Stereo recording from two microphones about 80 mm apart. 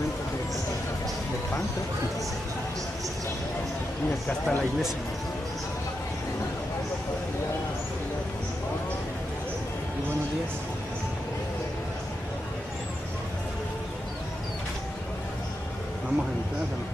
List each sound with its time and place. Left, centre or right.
4.3 s speech: centre